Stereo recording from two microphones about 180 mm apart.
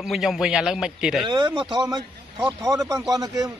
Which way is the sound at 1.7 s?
20° right (ahead or behind).